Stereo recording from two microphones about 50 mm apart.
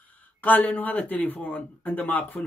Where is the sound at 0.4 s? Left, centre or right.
Left.